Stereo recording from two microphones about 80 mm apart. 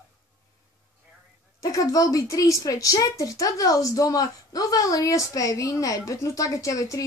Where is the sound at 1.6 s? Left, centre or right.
Left.